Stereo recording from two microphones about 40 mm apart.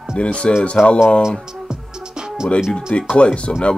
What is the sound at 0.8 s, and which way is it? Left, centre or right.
Speech, left.